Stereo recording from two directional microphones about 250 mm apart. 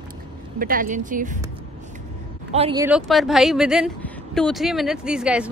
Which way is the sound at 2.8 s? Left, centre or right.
Centre.